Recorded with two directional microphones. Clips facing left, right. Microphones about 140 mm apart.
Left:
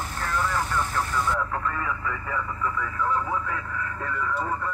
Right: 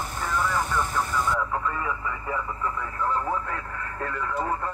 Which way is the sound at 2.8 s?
45° right (ahead or behind).